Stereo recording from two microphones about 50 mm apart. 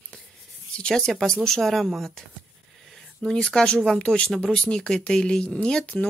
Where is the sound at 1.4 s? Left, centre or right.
Centre.